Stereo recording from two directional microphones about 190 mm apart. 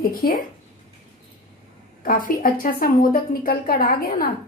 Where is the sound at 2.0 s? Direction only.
45° left (ahead or behind).